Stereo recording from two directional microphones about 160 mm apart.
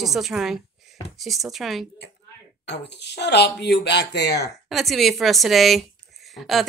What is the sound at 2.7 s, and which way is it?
Speech, 90° left.